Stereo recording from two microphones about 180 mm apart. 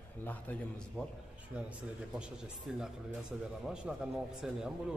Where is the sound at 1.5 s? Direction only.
5° right (ahead or behind).